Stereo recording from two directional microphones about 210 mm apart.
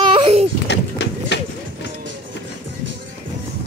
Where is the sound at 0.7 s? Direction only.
55° left (ahead or behind).